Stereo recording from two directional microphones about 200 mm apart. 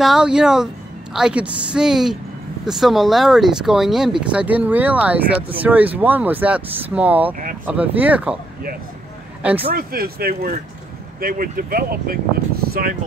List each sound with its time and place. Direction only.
0.0 s speech: 5° right (ahead or behind)
9.7 s speech: 50° right (ahead or behind)
12.6 s a sound: 50° right (ahead or behind)